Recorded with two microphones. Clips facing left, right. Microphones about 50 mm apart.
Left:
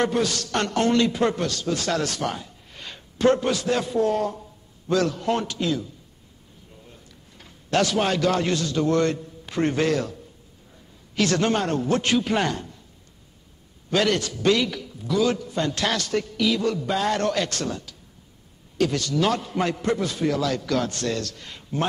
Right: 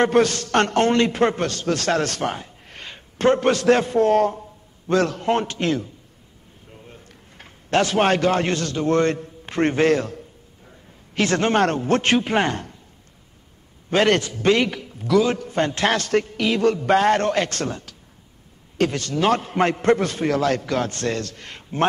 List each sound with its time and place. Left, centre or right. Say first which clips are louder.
0.1 s a man's voice: right 6 dB; right
3.3 s a man's voice: right 6 dB; right
5.6 s a man's voice: right 3 dB; right
6.7 s drawer open or close: right 5 dB; right
7.7 s a man's voice: right 4 dB; right
11.1 s a man's voice: right 3 dB; right
13.8 s a man's voice: right 4 dB; right
20.6 s a man's voice: right 1 dB; right
21.4 s speech: right 3 dB; right